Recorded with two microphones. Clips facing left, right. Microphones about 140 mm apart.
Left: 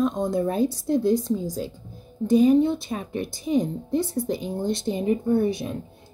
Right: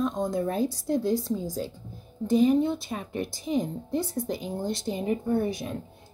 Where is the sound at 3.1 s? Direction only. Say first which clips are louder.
Left 3 dB; 20° left (ahead or behind).